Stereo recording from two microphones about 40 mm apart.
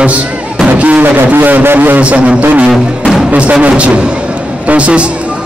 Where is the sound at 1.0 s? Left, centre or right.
Right.